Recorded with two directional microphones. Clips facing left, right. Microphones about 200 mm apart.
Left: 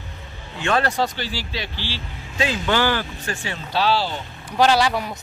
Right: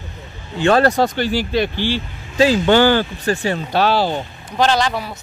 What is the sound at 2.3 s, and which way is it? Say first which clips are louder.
Speech: right 9 dB; 35° right (ahead or behind).